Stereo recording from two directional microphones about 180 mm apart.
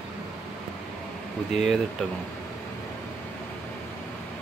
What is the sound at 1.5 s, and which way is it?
Speech, centre (ahead or behind).